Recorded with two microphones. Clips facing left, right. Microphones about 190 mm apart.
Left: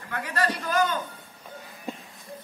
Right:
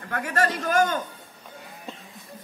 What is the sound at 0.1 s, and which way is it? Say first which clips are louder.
Speech: right 3 dB; 50° right (ahead or behind).